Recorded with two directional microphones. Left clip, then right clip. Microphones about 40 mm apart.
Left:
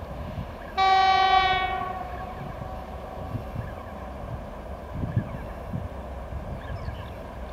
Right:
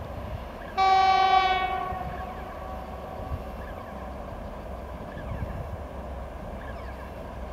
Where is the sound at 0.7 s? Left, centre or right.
Centre.